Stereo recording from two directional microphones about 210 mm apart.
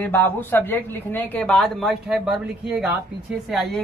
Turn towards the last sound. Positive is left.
turn(degrees=0)  # may be behind; listen again after turning